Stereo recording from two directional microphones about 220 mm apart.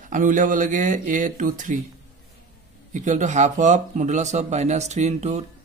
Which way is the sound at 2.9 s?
35° right (ahead or behind).